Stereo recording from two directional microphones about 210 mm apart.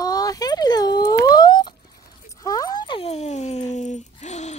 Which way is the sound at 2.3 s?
15° left (ahead or behind).